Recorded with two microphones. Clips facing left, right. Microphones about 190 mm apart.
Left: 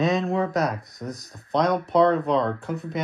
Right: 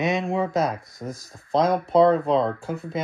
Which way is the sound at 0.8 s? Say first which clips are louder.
Even; centre (ahead or behind).